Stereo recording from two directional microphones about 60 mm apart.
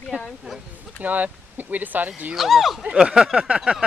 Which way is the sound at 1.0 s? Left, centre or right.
Right.